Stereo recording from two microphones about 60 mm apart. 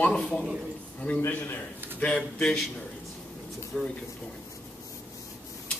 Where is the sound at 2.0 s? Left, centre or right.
Centre.